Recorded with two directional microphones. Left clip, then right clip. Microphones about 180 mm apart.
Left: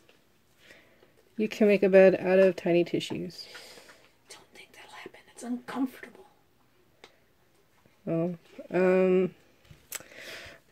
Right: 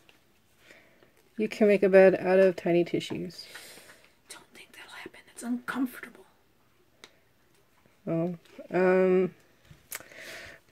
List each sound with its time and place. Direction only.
1.4 s speech: 5° left (ahead or behind)
4.3 s whispering: 45° right (ahead or behind)
8.0 s speech: 5° left (ahead or behind)
9.8 s a sound: centre (ahead or behind)